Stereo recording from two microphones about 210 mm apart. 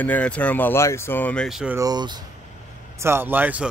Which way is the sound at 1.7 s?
20° right (ahead or behind).